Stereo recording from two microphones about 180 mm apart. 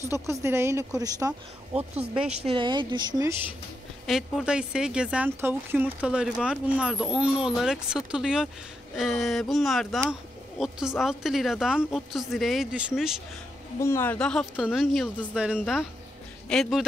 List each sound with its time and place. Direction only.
0.3 s a woman's voice: 15° right (ahead or behind)
4.0 s a woman's voice: centre (ahead or behind)
13.7 s a woman's voice: 15° left (ahead or behind)